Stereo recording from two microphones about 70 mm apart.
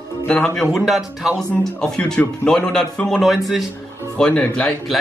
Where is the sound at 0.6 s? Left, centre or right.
Centre.